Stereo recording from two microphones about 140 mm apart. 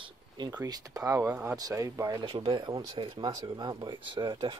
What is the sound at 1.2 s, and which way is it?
Speech, 10° right (ahead or behind).